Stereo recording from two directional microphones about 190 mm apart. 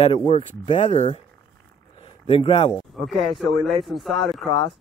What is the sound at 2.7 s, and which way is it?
Speech, centre (ahead or behind).